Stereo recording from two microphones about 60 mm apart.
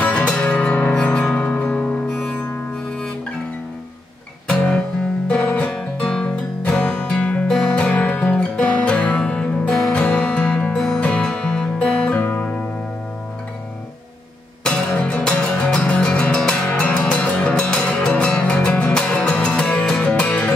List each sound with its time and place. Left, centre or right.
0.0 s music: centre
4.5 s music: centre
14.6 s music: centre